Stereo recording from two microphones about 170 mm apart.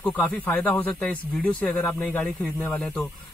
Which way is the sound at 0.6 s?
10° left (ahead or behind).